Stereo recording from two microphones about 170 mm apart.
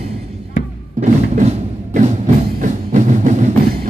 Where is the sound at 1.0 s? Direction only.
45° right (ahead or behind).